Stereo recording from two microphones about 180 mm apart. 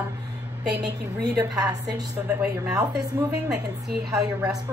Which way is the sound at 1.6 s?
20° right (ahead or behind).